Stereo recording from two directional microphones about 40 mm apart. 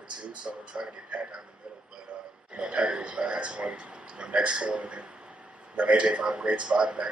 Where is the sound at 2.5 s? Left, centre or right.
Right.